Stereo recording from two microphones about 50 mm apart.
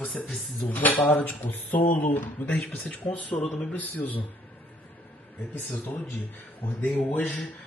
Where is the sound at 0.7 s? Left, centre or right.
Left.